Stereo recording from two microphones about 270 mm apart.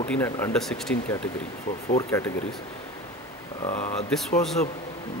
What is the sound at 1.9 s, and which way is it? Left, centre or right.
Speech, centre.